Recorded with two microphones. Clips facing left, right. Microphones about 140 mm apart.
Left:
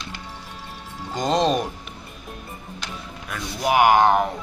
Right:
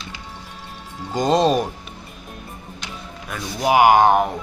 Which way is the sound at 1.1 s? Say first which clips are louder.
Right 3 dB; 10° right (ahead or behind).